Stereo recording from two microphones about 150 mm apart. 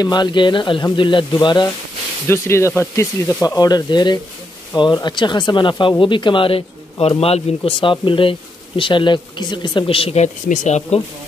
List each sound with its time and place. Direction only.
0.0 s speech: 30° left (ahead or behind)
2.2 s speech: 20° left (ahead or behind)
3.4 s speech: 25° left (ahead or behind)
10.2 s speech: 55° left (ahead or behind)